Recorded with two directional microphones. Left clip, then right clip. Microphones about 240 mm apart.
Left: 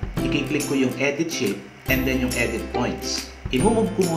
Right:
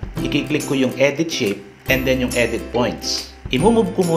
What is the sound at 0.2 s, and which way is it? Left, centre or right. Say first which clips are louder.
Speech: right 3 dB; right.